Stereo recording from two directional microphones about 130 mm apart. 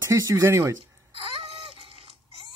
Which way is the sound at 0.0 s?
20° right (ahead or behind).